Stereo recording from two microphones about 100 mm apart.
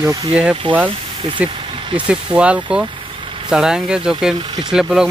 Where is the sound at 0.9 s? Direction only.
60° right (ahead or behind).